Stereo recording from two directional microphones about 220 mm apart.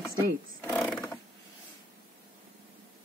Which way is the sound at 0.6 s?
10° left (ahead or behind).